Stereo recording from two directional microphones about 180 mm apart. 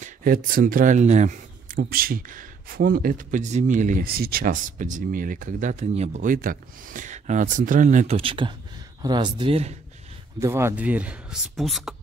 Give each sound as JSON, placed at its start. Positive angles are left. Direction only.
{"t": 0.0, "sound": "speech", "side_deg": -50}
{"t": 8.2, "sound": "speech", "side_deg": -30}
{"t": 10.4, "sound": "speech", "side_deg": -15}